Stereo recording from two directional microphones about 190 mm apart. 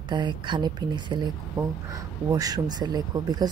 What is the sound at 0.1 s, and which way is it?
Speech, 25° right (ahead or behind).